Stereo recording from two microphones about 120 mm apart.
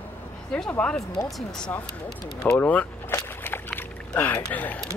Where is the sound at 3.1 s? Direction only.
20° left (ahead or behind).